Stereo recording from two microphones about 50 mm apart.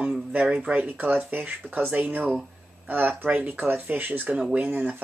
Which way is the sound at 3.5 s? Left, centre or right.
Right.